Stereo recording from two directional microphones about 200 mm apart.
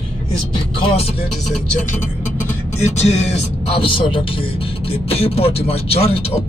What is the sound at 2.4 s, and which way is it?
A man's voice, 35° left (ahead or behind).